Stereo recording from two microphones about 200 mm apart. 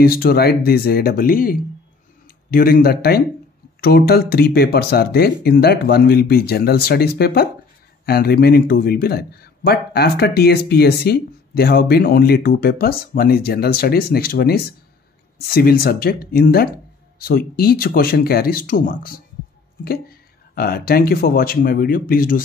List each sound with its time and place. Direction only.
0.0 s a man's voice: 50° left (ahead or behind)